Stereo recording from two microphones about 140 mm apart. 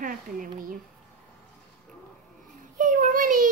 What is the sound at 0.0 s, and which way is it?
Speech, 75° right (ahead or behind).